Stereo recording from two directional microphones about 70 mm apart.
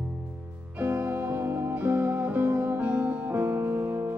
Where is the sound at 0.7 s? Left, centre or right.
Right.